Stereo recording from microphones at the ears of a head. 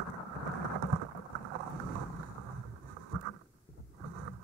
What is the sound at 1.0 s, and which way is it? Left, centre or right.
Boat, right.